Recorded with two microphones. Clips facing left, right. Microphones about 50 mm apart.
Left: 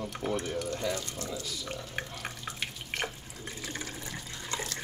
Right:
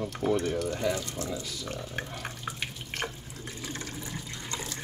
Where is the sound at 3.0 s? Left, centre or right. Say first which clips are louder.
Right 2 dB; centre.